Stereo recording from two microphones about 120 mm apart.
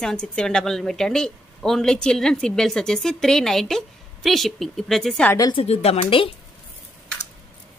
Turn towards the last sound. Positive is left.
turn(degrees=55)  # may be behind; listen again after turning